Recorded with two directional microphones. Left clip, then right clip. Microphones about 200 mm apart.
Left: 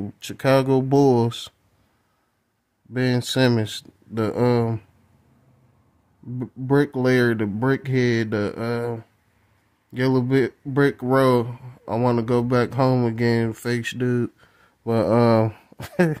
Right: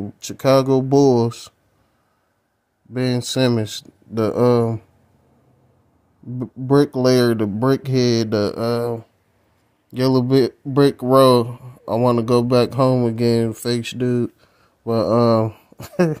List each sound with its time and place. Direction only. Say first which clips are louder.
0.0 s speech: right 4 dB; 10° left (ahead or behind)
2.9 s speech: right 1 dB; 15° left (ahead or behind)
6.3 s speech: right 4 dB; centre (ahead or behind); by 16.0 s 25° left (ahead or behind)